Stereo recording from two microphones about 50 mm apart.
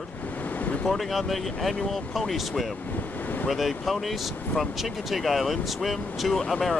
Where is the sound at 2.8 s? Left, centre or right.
Left.